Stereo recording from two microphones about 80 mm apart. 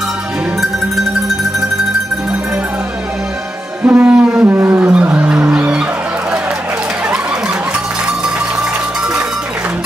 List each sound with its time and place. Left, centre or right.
3.8 s music: centre